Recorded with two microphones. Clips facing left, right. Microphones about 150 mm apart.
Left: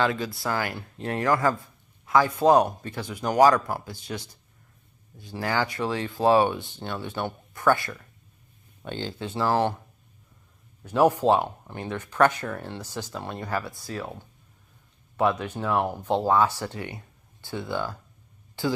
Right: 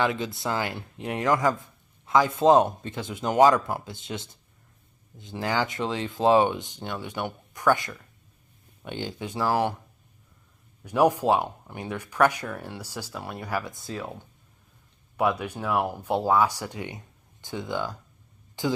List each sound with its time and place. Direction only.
0.0 s speech: 20° right (ahead or behind)
10.8 s speech: 15° right (ahead or behind)